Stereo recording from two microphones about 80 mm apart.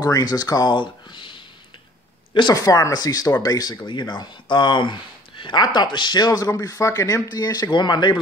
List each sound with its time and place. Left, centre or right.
0.0 s speech: left
2.5 s speech: left
7.4 s speech: left